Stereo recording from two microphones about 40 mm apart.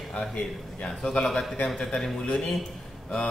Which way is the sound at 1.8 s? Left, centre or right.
Centre.